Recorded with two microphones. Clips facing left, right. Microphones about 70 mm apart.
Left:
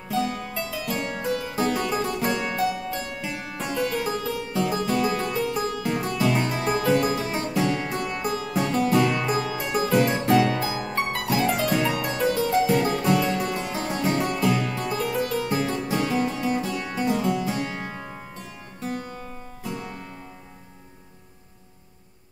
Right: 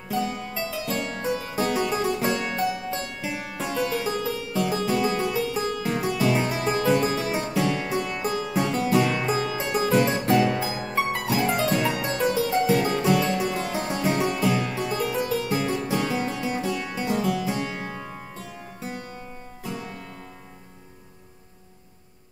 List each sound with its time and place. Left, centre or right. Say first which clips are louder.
0.1 s music: left 1 dB; centre
3.3 s harpsichord: right 1 dB; centre
8.0 s music: even; centre
9.8 s harpsichord: even; centre
10.9 s music: right 3 dB; centre
11.8 s harpsichord: even; centre
13.4 s music: right 1 dB; centre
15.0 s harpsichord: even; centre
18.8 s music: left 5 dB; centre